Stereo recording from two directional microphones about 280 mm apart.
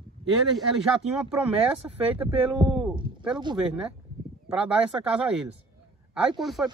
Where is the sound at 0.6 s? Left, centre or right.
Centre.